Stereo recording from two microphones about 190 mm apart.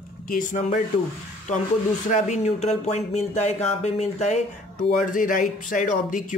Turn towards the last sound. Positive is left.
turn(degrees=45)  # may be behind; listen again after turning